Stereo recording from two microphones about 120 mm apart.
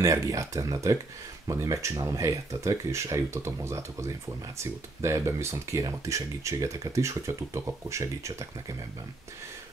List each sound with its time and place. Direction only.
0.0 s speech: 25° right (ahead or behind)